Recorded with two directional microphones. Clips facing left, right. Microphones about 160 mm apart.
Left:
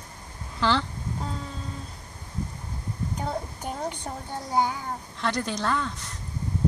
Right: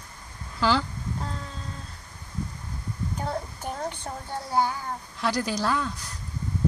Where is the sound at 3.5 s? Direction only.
15° left (ahead or behind).